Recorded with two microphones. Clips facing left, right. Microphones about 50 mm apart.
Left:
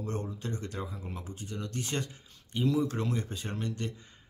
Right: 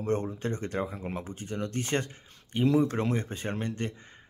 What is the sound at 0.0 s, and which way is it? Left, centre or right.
Speech, right.